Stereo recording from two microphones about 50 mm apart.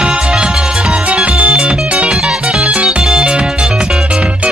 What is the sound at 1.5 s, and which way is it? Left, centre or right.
Music, centre.